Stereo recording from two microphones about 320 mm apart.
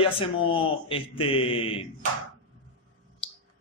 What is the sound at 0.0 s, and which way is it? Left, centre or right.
A man's voice, centre.